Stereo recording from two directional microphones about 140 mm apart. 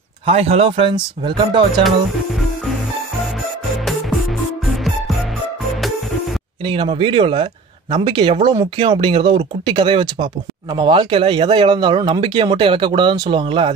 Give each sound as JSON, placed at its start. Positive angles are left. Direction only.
{"t": 0.3, "sound": "speech", "side_deg": -45}
{"t": 6.6, "sound": "speech", "side_deg": -40}